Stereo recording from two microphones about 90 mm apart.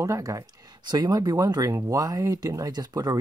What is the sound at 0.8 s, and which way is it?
Speech, 45° right (ahead or behind).